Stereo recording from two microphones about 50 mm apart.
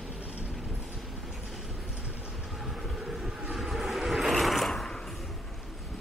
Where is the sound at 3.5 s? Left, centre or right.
Centre.